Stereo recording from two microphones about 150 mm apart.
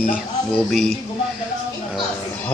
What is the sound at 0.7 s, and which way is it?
Speech, centre (ahead or behind).